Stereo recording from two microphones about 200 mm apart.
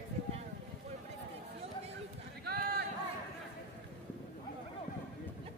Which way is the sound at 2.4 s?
50° right (ahead or behind).